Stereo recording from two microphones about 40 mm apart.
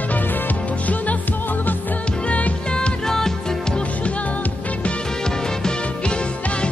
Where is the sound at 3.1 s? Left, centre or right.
Centre.